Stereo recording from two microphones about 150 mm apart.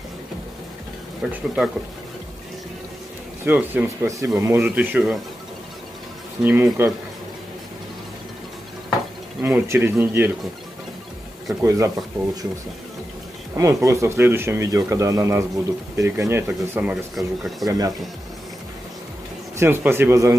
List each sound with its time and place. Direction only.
1.2 s speech: 5° right (ahead or behind)
3.4 s speech: 10° right (ahead or behind)
6.4 s speech: 15° right (ahead or behind)
9.4 s speech: 15° right (ahead or behind)
11.6 s speech: 20° right (ahead or behind)
13.6 s speech: 20° right (ahead or behind); by 17.6 s centre (ahead or behind)
17.6 s speech: 25° right (ahead or behind)
19.6 s speech: 15° right (ahead or behind)